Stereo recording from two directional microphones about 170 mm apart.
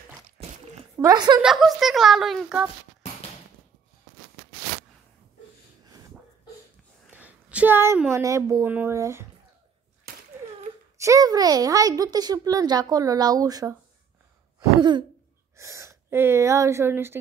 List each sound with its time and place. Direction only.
1.0 s a child's voice: 25° right (ahead or behind)
1.4 s speech: centre (ahead or behind)
7.1 s a sound: 10° right (ahead or behind)
8.1 s a child's voice: 15° right (ahead or behind)
10.1 s a sound: 65° right (ahead or behind)
11.0 s a child's voice: 20° right (ahead or behind)
14.8 s throat clearing: 25° right (ahead or behind)
15.5 s speech: 15° right (ahead or behind)